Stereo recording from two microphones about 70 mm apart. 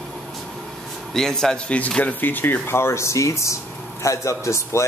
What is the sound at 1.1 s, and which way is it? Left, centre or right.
A man's voice, centre.